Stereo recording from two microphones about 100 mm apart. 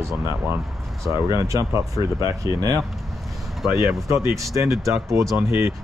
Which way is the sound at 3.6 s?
Centre (ahead or behind).